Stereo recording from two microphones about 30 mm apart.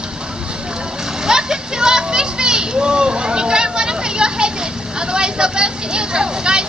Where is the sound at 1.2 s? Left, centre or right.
Right.